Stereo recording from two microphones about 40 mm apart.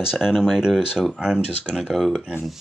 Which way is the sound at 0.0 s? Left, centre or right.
Centre.